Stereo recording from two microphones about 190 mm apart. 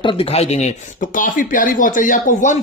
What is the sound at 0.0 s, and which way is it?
Speech, 30° left (ahead or behind).